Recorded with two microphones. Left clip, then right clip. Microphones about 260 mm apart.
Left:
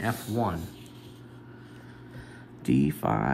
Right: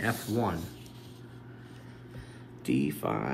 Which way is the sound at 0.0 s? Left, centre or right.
Centre.